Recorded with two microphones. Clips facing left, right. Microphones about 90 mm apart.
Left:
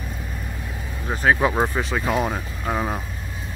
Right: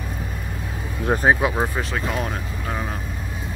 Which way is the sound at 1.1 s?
50° right (ahead or behind).